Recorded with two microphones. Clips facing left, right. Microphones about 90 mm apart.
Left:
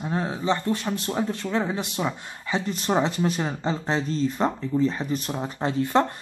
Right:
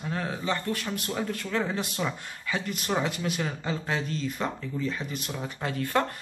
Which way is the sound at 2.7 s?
30° left (ahead or behind).